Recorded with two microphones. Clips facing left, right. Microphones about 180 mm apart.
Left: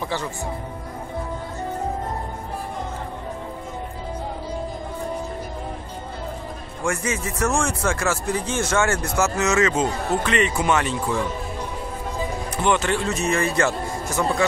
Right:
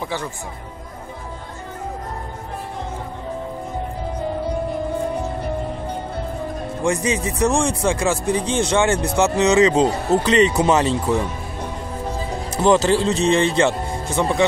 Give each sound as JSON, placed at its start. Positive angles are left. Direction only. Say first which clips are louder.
{"t": 6.8, "sound": "speech", "louder": "right 4 dB", "side_deg": -15}
{"t": 9.8, "sound": "speech", "louder": "right 5 dB", "side_deg": -35}
{"t": 12.5, "sound": "speech", "louder": "right 6 dB", "side_deg": -35}